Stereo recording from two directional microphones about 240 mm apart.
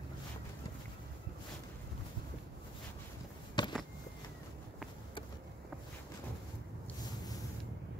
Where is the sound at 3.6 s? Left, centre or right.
Centre.